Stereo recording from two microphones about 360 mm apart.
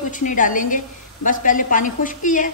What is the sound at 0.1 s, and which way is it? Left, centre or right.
A woman's voice, left.